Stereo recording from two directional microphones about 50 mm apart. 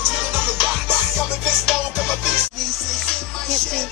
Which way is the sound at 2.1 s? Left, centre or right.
Centre.